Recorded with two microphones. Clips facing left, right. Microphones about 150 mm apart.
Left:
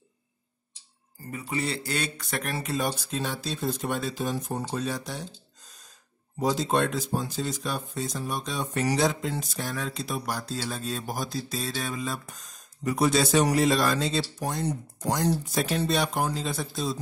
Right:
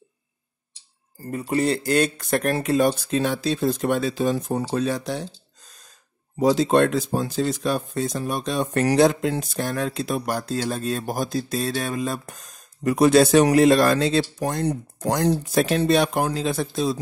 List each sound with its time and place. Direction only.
1.2 s speech: 40° right (ahead or behind); by 5.2 s 75° right (ahead or behind)
6.5 s speech: 75° right (ahead or behind)